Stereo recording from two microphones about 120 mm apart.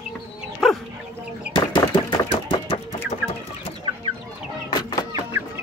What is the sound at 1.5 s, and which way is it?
Machine gun, 40° left (ahead or behind).